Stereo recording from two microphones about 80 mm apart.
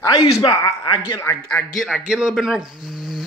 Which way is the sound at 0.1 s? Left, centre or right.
Left.